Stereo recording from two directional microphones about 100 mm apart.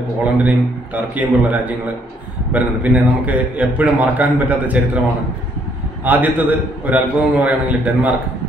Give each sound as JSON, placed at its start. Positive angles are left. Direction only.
{"t": 0.2, "sound": "a man's voice", "side_deg": -15}
{"t": 6.0, "sound": "a man's voice", "side_deg": -15}